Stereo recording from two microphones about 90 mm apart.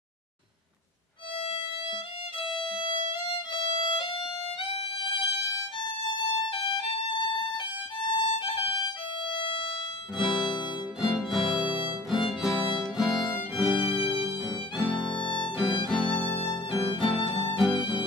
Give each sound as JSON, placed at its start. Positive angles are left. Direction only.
{"t": 1.4, "sound": "violin", "side_deg": 90}
{"t": 2.4, "sound": "violin", "side_deg": 70}
{"t": 10.1, "sound": "music", "side_deg": 0}
{"t": 12.9, "sound": "violin", "side_deg": 0}
{"t": 14.4, "sound": "music", "side_deg": 0}
{"t": 15.2, "sound": "violin", "side_deg": 65}
{"t": 15.6, "sound": "music", "side_deg": 5}
{"t": 16.2, "sound": "music", "side_deg": 15}
{"t": 16.7, "sound": "music", "side_deg": 0}